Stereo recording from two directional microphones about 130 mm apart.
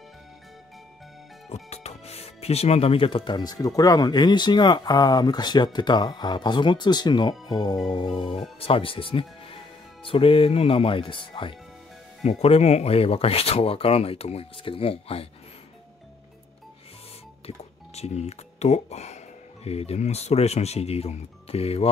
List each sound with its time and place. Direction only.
1.5 s speech: 55° left (ahead or behind); by 8.1 s 35° left (ahead or behind)
8.5 s speech: 45° left (ahead or behind)
12.2 s speech: 50° left (ahead or behind)
17.5 s speech: 55° left (ahead or behind)